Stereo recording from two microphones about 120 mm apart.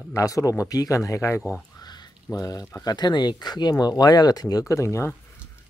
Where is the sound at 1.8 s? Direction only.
35° left (ahead or behind).